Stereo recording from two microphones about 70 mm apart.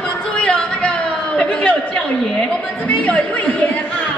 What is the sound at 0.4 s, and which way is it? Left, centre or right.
Chatter, centre.